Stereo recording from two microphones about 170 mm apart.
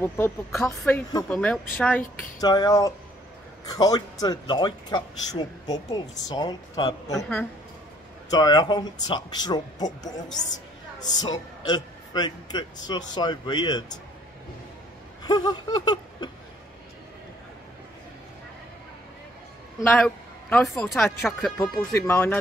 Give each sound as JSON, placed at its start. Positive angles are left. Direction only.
{"t": 0.0, "sound": "speech", "side_deg": 15}
{"t": 2.4, "sound": "speech", "side_deg": 25}
{"t": 15.2, "sound": "speech", "side_deg": 25}
{"t": 19.8, "sound": "speech", "side_deg": 10}
{"t": 21.5, "sound": "speech", "side_deg": 15}